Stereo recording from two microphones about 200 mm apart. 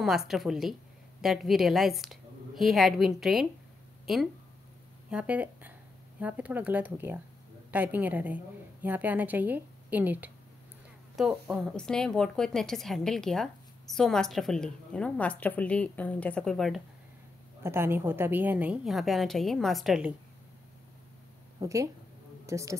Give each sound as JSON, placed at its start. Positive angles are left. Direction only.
{"t": 0.0, "sound": "a woman's voice", "side_deg": 0}
{"t": 4.0, "sound": "a sound", "side_deg": 0}
{"t": 5.1, "sound": "a woman's voice", "side_deg": -5}
{"t": 17.6, "sound": "a woman's voice", "side_deg": -10}
{"t": 21.5, "sound": "a woman's voice", "side_deg": -15}